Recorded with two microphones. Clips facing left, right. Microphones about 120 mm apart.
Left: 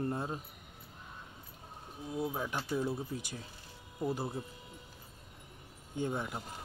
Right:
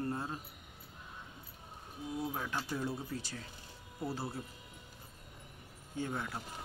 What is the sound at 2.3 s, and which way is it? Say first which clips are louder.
Speech: left 3 dB; 15° left (ahead or behind).